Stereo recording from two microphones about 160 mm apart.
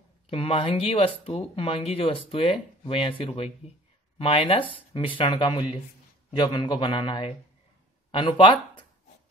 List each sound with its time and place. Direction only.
0.3 s speech: 35° left (ahead or behind)